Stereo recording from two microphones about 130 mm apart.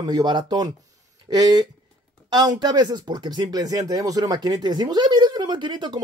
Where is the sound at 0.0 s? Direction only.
35° right (ahead or behind).